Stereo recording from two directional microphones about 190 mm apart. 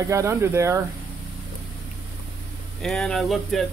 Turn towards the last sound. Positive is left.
turn(degrees=0)  # may be behind; listen again after turning